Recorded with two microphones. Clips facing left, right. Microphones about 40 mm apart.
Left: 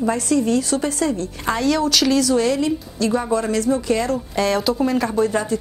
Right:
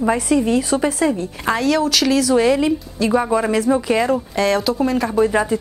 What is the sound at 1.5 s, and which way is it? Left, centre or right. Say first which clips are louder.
A woman's voice: right 1 dB; centre.